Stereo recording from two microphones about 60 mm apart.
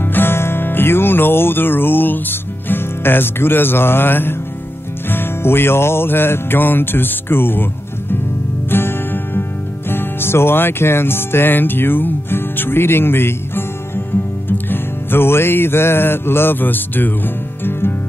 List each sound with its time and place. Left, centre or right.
0.0 s music: left
8.6 s music: left
9.8 s speech: left
14.7 s music: left